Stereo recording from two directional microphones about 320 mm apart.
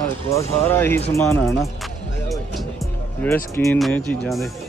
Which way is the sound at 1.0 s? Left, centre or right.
Centre.